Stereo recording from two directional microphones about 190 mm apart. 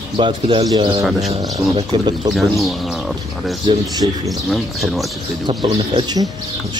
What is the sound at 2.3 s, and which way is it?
Speech, centre (ahead or behind).